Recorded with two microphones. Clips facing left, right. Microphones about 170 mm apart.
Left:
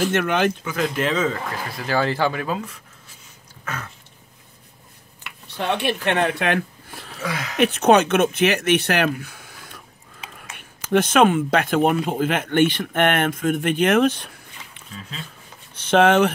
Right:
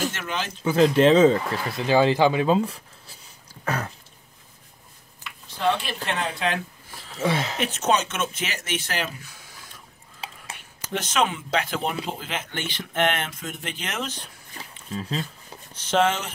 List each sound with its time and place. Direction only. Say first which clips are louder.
0.1 s speech: left 11 dB; 60° left (ahead or behind)
0.7 s speech: right 6 dB; 30° right (ahead or behind)
3.6 s a sound: right 5 dB; 35° right (ahead or behind)
5.2 s a sound: right 3 dB; 65° left (ahead or behind)
6.0 s speech: left 5 dB; 65° left (ahead or behind)
7.1 s speech: right 4 dB; 25° right (ahead or behind)
7.5 s speech: left 8 dB; 60° left (ahead or behind)
10.9 s speech: left 9 dB; 55° left (ahead or behind)
14.9 s speech: right 8 dB; 40° right (ahead or behind)
15.7 s speech: left 6 dB; 60° left (ahead or behind)